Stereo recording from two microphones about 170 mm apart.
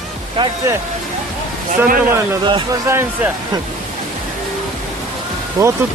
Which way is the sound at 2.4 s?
25° right (ahead or behind).